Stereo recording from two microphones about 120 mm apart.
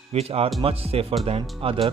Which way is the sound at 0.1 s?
55° right (ahead or behind).